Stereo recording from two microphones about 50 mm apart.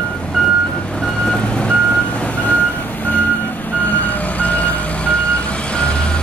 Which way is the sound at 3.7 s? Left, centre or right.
Left.